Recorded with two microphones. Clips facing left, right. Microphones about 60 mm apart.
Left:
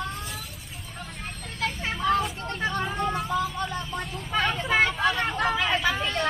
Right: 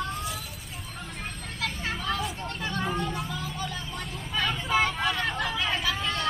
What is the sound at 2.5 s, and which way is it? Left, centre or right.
Vehicle, left.